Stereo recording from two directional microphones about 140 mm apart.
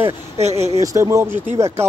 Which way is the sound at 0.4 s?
50° right (ahead or behind).